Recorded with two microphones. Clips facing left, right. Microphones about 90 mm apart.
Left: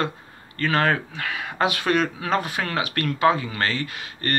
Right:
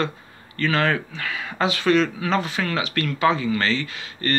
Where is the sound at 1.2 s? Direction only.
60° left (ahead or behind).